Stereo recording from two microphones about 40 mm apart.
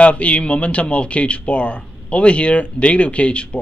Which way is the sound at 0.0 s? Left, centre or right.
Left.